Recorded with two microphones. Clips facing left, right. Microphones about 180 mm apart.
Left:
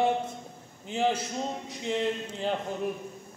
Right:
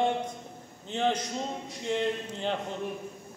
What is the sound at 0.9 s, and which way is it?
A man's voice, 10° left (ahead or behind).